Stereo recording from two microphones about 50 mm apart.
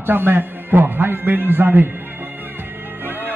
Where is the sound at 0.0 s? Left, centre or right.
Right.